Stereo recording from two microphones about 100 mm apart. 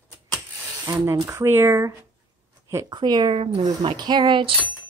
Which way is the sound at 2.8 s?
45° right (ahead or behind).